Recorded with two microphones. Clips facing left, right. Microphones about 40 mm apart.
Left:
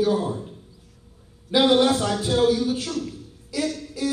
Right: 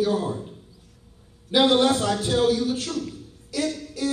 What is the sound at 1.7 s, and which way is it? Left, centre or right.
A man's voice, centre.